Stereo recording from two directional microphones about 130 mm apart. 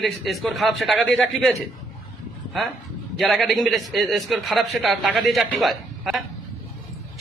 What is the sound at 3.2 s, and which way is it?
A man's voice, centre (ahead or behind).